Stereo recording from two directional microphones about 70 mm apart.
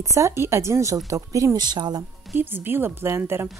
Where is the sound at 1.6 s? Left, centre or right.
Right.